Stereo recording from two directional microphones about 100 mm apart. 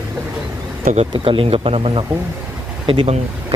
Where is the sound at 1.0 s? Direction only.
65° right (ahead or behind).